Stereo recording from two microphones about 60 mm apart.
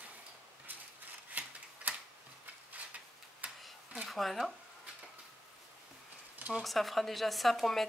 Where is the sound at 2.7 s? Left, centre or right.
Right.